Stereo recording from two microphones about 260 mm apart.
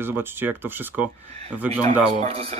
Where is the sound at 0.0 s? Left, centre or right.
Centre.